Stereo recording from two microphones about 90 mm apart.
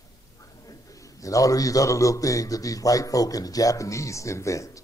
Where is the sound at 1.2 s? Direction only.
40° left (ahead or behind).